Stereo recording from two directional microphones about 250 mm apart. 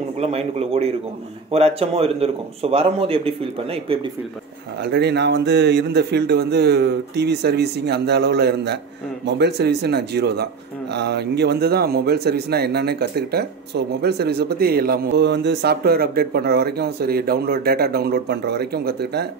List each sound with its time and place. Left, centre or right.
0.2 s a man's voice: right
4.8 s a man's voice: right